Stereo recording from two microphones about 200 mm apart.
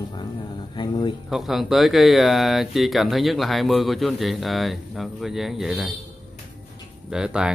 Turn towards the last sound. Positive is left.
turn(degrees=-5)  # may be behind; listen again after turning